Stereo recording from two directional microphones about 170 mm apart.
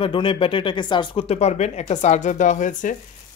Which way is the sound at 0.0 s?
30° left (ahead or behind).